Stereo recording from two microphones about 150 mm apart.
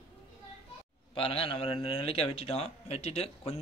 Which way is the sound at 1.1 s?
40° left (ahead or behind).